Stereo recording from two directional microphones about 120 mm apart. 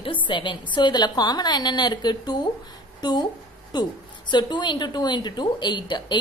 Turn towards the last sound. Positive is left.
turn(degrees=40)  # may be behind; listen again after turning